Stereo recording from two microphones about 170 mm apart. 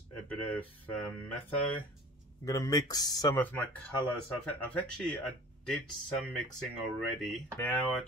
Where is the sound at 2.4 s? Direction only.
20° left (ahead or behind).